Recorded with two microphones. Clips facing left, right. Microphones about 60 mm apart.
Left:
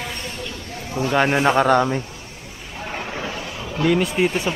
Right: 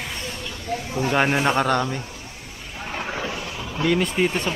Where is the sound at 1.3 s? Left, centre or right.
Centre.